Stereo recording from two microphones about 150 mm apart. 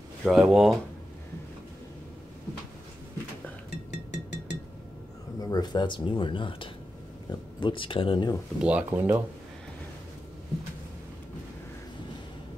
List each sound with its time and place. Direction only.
0.2 s speech: centre (ahead or behind)
3.7 s music: 90° left
5.4 s speech: 25° left (ahead or behind)
8.5 s speech: 10° right (ahead or behind)